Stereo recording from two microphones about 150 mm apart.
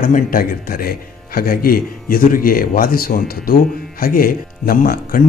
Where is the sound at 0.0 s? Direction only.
70° left (ahead or behind).